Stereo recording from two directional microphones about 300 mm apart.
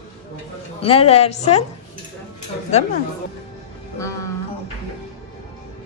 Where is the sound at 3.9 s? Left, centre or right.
Centre.